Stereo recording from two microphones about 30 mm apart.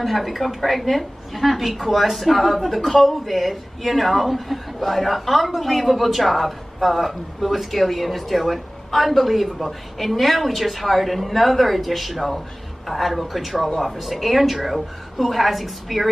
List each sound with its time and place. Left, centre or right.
0.0 s a woman's voice: centre